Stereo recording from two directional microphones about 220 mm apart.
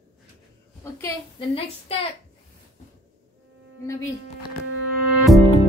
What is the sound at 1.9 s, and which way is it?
Speech, 25° left (ahead or behind).